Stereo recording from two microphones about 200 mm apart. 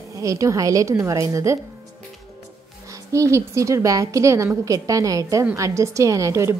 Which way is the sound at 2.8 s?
15° right (ahead or behind).